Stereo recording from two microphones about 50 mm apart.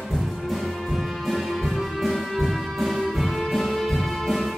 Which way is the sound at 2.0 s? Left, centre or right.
Centre.